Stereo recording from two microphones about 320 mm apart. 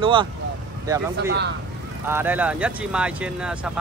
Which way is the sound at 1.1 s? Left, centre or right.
Right.